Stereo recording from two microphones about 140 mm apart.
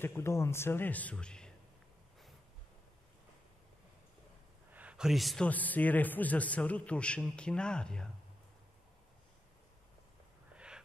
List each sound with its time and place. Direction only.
0.0 s a man's voice: 20° left (ahead or behind)
4.7 s a man's voice: 5° right (ahead or behind)
5.5 s a man's voice: 10° left (ahead or behind)
10.5 s a sound: 5° right (ahead or behind)